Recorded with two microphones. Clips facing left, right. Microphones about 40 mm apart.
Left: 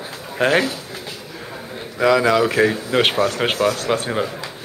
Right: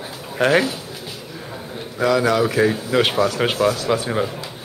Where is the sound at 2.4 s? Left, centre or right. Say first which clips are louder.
Left 1 dB; left.